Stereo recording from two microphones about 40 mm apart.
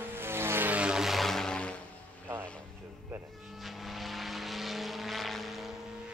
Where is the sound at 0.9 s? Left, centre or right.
Centre.